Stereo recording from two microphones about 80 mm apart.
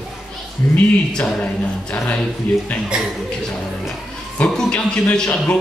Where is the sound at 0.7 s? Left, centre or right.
Centre.